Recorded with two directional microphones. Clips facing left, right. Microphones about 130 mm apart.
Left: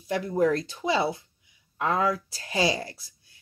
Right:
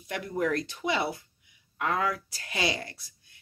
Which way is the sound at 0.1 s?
30° left (ahead or behind).